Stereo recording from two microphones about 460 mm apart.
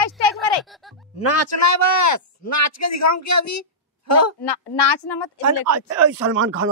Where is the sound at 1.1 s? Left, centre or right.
Left.